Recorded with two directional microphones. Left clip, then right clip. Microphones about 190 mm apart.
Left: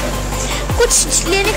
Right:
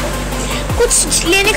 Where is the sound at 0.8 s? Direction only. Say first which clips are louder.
Even; 30° left (ahead or behind).